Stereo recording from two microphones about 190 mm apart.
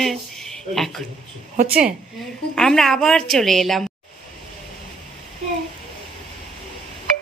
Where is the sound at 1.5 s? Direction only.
50° right (ahead or behind).